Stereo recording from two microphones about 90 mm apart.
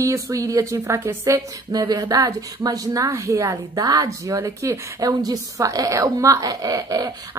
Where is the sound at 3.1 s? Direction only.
30° right (ahead or behind).